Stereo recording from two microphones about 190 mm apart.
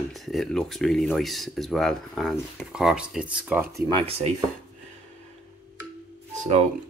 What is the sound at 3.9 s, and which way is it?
Speech, 30° right (ahead or behind).